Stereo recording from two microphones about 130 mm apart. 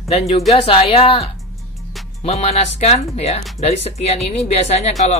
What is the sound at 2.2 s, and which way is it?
Speech, 55° left (ahead or behind).